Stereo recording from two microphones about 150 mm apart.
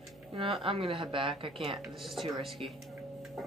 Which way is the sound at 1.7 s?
Centre (ahead or behind).